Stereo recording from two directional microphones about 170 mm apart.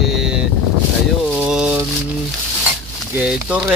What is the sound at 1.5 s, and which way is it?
Speech, 5° right (ahead or behind).